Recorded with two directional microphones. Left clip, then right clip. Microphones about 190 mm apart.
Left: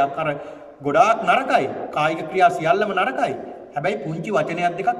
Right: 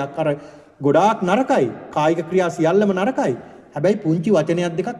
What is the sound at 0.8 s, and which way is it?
A man's voice, 40° right (ahead or behind).